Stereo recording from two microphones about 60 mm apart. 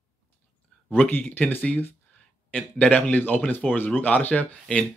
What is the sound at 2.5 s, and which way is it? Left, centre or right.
Speech, centre.